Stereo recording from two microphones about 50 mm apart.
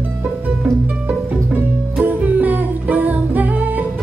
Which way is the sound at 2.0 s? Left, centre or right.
Right.